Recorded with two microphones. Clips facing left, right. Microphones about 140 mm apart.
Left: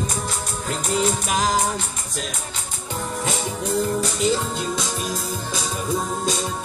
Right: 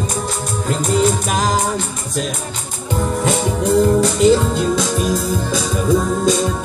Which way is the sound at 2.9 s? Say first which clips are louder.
Right 9 dB; 55° right (ahead or behind).